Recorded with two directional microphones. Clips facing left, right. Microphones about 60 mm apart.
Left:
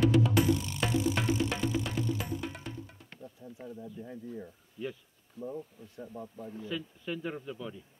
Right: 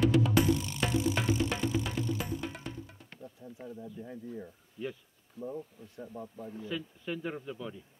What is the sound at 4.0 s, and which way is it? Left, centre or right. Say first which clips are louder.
Speech: even; right.